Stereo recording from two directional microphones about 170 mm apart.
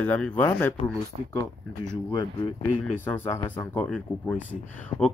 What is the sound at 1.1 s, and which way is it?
Speech, 45° right (ahead or behind).